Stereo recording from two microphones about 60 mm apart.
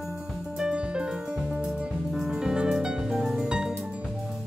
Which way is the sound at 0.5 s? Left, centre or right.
Centre.